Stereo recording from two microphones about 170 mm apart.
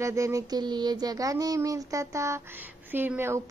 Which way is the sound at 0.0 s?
20° right (ahead or behind).